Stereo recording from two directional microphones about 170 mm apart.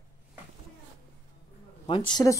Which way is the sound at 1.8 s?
30° left (ahead or behind).